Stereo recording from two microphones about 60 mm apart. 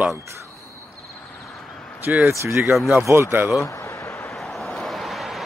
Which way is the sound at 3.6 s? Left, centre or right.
Left.